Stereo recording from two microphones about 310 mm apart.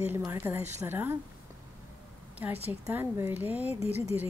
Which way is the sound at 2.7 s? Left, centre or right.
Centre.